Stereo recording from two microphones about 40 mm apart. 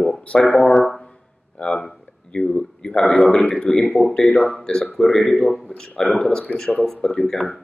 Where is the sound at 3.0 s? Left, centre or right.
Left.